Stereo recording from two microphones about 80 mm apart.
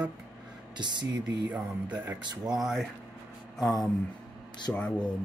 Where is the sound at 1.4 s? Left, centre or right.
Centre.